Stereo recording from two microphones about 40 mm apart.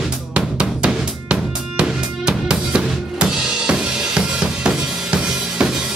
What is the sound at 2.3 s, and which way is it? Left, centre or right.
Drum kit, right.